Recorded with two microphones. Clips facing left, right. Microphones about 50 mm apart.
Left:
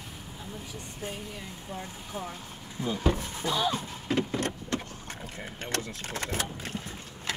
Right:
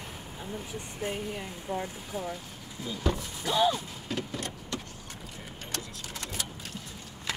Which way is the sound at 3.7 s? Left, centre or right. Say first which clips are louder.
Left 5 dB; left.